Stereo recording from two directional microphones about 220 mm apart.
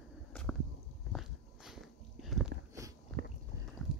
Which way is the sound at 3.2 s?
45° right (ahead or behind).